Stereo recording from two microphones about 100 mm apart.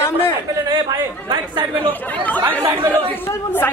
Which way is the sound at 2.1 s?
15° left (ahead or behind).